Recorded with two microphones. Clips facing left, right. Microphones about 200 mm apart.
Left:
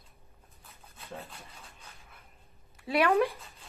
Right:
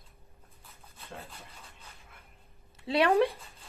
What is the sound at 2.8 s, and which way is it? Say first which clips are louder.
Speech: right 1 dB; 30° right (ahead or behind).